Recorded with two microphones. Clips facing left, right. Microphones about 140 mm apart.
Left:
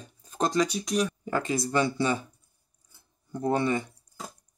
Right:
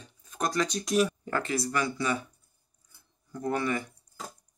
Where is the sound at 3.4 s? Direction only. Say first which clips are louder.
Left 4 dB; 25° left (ahead or behind).